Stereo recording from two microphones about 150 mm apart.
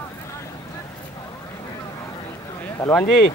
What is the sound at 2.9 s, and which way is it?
Speech, 5° left (ahead or behind).